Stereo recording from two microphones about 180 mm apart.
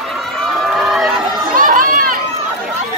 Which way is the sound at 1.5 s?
50° right (ahead or behind).